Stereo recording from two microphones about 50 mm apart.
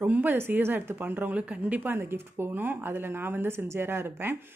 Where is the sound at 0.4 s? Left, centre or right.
Right.